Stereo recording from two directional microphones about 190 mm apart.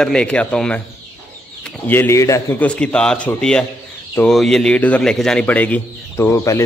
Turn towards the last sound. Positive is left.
turn(degrees=15)  # may be behind; listen again after turning